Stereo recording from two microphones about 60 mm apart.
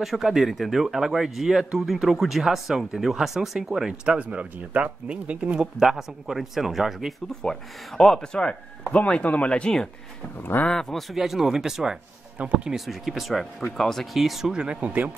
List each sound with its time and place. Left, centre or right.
0.0 s speech: centre; by 5.6 s right
5.6 s speech: centre
10.3 s speech: left
10.7 s speech: centre
12.4 s speech: right
12.7 s speech: centre
14.5 s speech: centre
14.9 s speech: right